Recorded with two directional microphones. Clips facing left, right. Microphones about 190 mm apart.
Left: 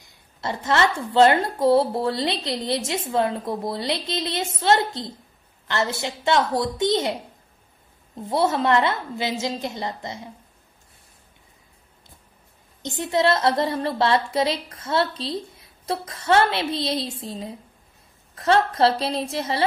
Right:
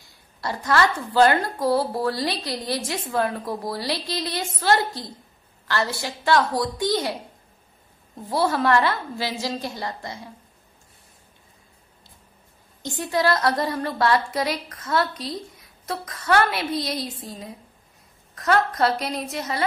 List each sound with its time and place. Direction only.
0.0 s a woman's voice: 25° left (ahead or behind)
8.2 s a woman's voice: 20° left (ahead or behind)
12.8 s a woman's voice: 25° left (ahead or behind)